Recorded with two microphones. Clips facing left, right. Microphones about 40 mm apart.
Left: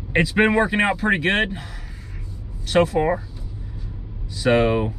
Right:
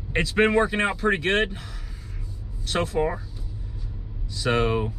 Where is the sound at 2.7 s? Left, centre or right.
Centre.